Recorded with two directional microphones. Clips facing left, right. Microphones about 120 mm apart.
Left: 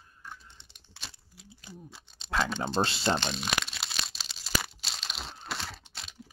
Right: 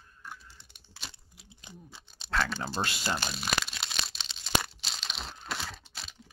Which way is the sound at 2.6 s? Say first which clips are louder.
Left 5 dB; 30° left (ahead or behind).